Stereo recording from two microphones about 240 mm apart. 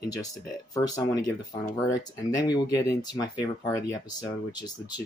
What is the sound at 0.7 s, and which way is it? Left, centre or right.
Speech, centre.